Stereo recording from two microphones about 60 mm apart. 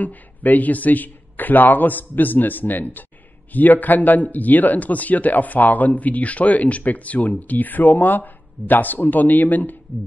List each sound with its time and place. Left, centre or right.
0.0 s a man's voice: left